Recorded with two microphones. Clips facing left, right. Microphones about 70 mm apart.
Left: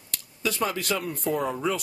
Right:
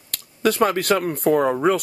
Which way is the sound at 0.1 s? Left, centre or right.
Right.